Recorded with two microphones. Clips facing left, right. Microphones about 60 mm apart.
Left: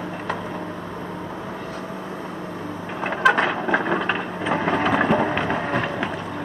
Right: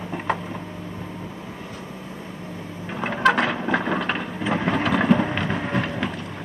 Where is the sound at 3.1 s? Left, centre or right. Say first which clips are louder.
Left 1 dB; centre.